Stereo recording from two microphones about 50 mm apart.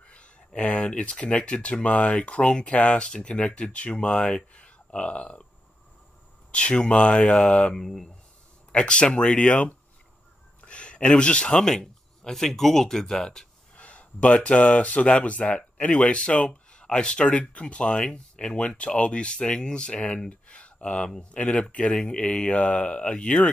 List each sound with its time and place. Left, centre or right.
0.0 s speech: left
6.5 s speech: left
7.7 s speech: centre
8.7 s speech: left
13.7 s speech: left